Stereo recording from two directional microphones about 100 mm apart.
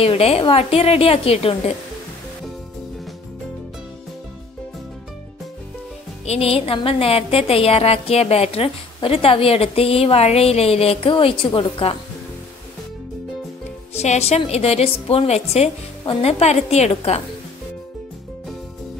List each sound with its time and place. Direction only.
0.0 s a woman's voice: 75° left (ahead or behind)
6.2 s a woman's voice: 90° left; by 12.0 s 60° left (ahead or behind)
13.9 s a woman's voice: 90° left